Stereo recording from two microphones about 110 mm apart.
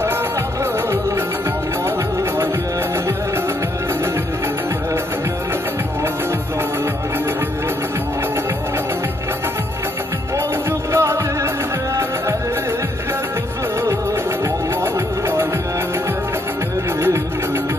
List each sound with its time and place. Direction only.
10.9 s music: 25° right (ahead or behind)